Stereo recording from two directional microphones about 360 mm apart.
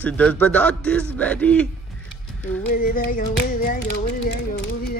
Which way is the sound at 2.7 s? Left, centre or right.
Left.